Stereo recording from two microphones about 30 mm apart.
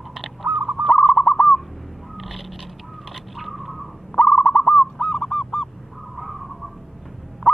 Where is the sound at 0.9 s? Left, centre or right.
Left.